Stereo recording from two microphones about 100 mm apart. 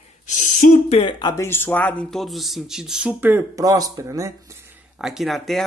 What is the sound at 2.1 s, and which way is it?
Speech, centre (ahead or behind).